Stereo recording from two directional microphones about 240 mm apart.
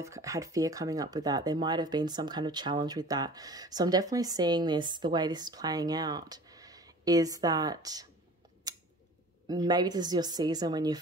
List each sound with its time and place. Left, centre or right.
0.0 s speech: centre
8.7 s scissors: centre
9.5 s speech: centre